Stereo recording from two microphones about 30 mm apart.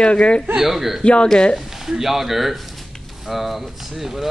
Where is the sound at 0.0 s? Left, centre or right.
Left.